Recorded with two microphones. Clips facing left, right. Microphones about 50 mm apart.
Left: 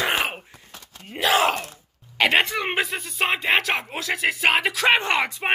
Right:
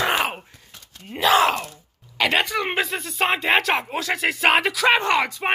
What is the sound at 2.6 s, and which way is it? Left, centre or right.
A man's voice, centre.